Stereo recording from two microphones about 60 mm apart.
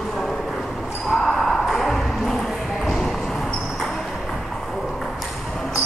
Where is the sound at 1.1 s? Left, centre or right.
Centre.